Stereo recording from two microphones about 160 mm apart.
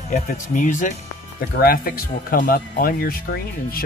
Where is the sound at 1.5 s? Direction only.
70° left (ahead or behind).